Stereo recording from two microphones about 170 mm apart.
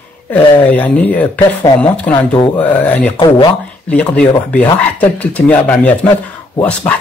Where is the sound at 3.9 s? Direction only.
5° left (ahead or behind).